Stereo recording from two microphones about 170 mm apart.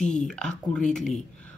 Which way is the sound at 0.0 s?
5° left (ahead or behind).